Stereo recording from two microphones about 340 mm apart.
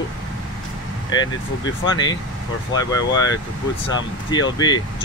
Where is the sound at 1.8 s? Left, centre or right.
Centre.